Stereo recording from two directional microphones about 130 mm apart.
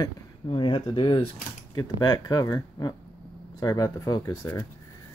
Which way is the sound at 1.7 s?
30° left (ahead or behind).